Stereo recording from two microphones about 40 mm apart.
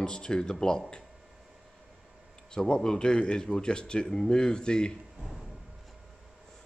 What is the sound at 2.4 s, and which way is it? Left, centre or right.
Speech, left.